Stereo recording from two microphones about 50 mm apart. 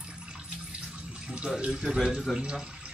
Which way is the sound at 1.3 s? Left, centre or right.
Centre.